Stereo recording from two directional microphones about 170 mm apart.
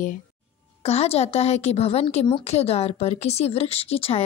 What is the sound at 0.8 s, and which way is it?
A woman's voice, 40° left (ahead or behind).